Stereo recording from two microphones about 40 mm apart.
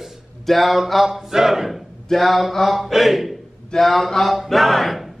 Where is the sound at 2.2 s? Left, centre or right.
Centre.